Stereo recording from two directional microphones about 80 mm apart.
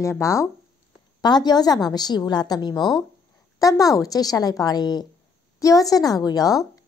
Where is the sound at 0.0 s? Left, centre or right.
Left.